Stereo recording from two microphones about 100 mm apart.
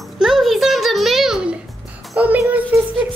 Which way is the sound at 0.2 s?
Centre (ahead or behind).